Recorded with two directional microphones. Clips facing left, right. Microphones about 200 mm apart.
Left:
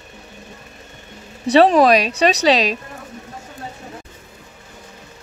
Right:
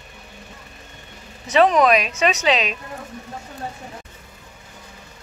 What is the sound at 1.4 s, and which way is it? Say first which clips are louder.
A woman's voice: left 4 dB; 35° left (ahead or behind).